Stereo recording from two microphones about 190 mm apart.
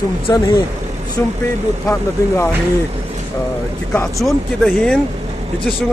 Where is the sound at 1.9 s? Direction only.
15° left (ahead or behind).